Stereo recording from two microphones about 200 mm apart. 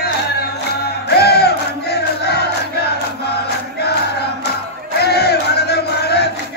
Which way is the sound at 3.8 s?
55° left (ahead or behind).